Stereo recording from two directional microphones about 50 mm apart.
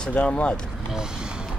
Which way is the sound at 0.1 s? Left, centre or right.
Left.